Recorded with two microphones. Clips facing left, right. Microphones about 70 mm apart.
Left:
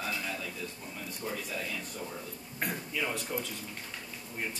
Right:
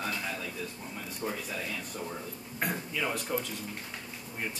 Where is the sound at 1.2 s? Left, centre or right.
Centre.